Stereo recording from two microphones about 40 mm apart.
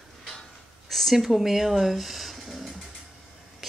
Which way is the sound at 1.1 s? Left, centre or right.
Centre.